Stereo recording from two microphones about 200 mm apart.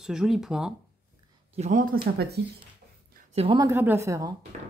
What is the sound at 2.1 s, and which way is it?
Speech, 50° right (ahead or behind).